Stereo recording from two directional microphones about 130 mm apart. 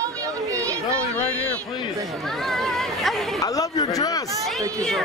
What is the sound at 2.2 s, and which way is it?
Speech, centre (ahead or behind).